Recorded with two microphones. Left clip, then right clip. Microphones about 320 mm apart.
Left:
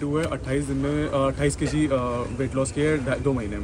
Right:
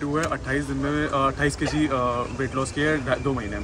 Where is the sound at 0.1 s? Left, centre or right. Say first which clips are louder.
Right 2 dB; centre.